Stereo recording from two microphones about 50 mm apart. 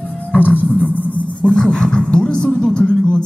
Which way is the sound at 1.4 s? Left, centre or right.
Centre.